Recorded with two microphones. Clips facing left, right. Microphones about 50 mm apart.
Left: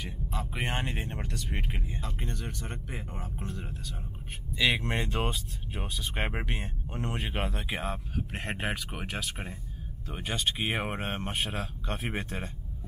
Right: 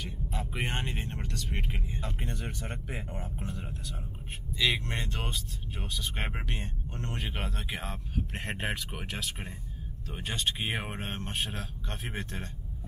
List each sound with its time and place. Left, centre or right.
0.3 s speech: centre
4.6 s speech: centre
7.2 s speech: centre